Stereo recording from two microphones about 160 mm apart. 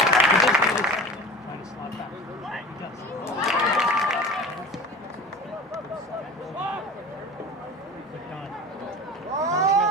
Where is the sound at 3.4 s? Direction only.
Centre (ahead or behind).